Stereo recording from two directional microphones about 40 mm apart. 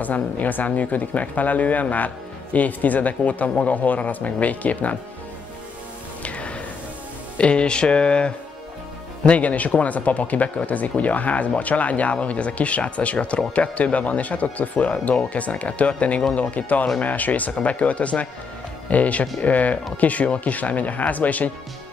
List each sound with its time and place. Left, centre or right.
0.0 s speech: left
6.2 s music: left
7.3 s speech: left
9.2 s speech: left